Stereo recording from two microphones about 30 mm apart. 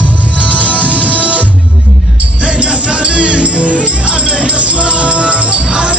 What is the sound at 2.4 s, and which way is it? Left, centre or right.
Music, right.